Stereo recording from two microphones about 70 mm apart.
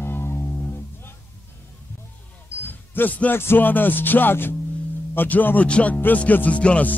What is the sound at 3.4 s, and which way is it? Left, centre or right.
Music, left.